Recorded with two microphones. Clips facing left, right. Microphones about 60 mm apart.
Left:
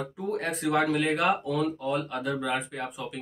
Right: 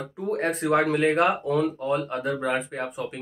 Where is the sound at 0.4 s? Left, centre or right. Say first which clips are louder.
Right 4 dB; right.